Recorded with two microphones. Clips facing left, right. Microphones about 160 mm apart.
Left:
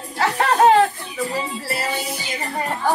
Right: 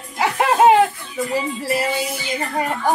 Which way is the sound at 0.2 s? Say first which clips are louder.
Right 1 dB; 10° right (ahead or behind).